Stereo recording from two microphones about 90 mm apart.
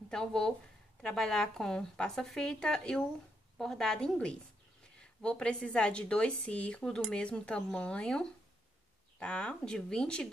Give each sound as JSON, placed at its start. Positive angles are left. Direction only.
{"t": 0.1, "sound": "a woman's voice", "side_deg": 10}